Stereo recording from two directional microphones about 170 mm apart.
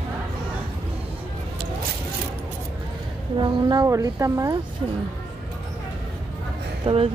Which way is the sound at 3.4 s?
25° right (ahead or behind).